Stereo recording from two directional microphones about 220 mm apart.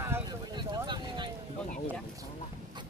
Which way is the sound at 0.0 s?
15° right (ahead or behind).